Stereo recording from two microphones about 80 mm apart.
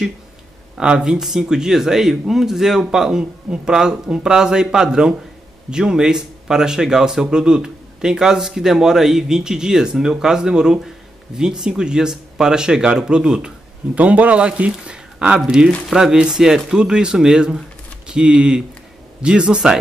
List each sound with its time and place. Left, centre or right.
0.7 s a man's voice: centre